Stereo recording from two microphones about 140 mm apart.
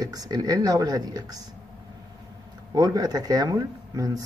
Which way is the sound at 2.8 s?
25° right (ahead or behind).